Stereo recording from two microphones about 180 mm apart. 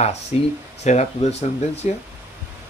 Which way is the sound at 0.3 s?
35° left (ahead or behind).